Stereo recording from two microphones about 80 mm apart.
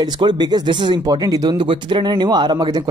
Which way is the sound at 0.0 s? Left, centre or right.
Right.